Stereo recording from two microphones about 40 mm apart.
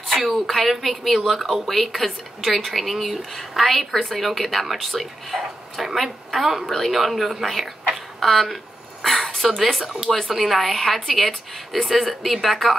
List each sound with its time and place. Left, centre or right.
0.2 s speech: centre
7.9 s a sound: centre
9.6 s speech: centre
10.0 s a woman's voice: centre
10.3 s speech: centre